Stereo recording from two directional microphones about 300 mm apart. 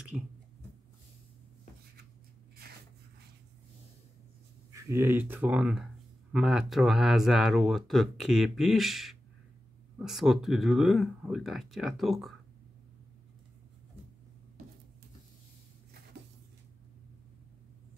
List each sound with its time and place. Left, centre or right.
0.1 s speech: centre
4.7 s speech: centre